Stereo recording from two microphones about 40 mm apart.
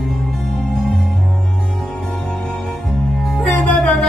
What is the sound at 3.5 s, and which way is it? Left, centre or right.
Music, left.